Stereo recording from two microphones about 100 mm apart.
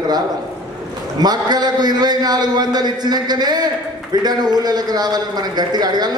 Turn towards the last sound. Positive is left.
turn(degrees=-45)  # may be behind; listen again after turning